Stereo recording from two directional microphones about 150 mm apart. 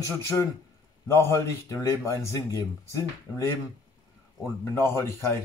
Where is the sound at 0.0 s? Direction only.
20° left (ahead or behind).